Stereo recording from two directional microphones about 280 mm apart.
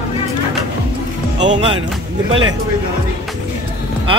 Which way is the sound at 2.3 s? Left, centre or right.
Right.